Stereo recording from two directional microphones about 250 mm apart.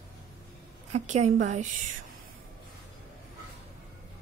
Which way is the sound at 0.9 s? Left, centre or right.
Right.